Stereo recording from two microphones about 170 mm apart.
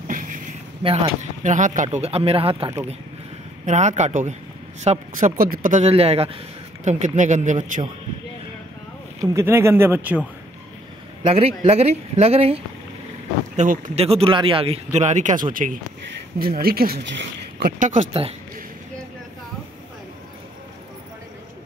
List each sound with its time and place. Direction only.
0.1 s a sound: 50° right (ahead or behind)
0.8 s speech: 35° right (ahead or behind)
1.4 s speech: 45° right (ahead or behind)
3.6 s speech: 45° right (ahead or behind)
9.2 s speech: 15° right (ahead or behind)
11.2 s speech: 35° right (ahead or behind)
13.6 s speech: 45° right (ahead or behind)
14.0 s speech: 35° right (ahead or behind); by 17.7 s 80° right
17.7 s speech: 45° right (ahead or behind)